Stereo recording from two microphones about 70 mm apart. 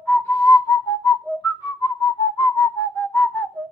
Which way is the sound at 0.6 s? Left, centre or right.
Left.